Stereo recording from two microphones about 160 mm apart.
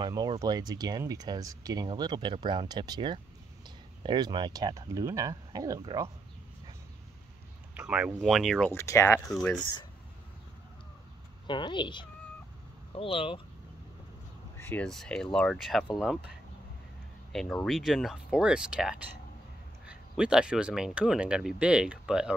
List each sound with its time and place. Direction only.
0.0 s speech: 25° right (ahead or behind)
7.7 s speech: 5° right (ahead or behind)
8.7 s speech: 20° left (ahead or behind)
11.4 s speech: 30° left (ahead or behind)
14.7 s speech: 5° left (ahead or behind)